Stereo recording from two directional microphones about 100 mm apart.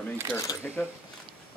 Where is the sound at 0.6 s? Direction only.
10° left (ahead or behind).